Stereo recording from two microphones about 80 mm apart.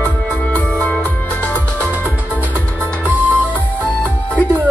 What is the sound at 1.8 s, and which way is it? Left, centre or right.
Music, right.